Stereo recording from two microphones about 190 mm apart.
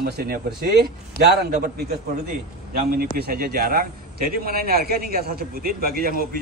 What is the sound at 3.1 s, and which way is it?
A man's voice, 50° right (ahead or behind).